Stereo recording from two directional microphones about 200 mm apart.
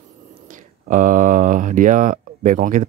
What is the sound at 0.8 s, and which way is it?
Speech, 40° right (ahead or behind).